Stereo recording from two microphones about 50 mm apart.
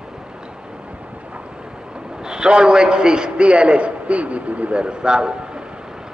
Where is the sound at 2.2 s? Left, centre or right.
Centre.